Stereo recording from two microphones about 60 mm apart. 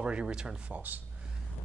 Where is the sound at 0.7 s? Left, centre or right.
Right.